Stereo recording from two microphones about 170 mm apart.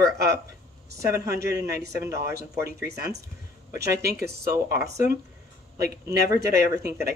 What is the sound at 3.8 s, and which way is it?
Speech, 70° right (ahead or behind).